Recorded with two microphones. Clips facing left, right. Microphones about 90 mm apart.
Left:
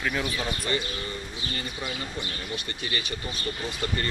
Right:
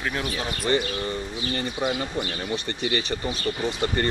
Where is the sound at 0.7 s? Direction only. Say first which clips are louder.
Right 7 dB; 35° right (ahead or behind).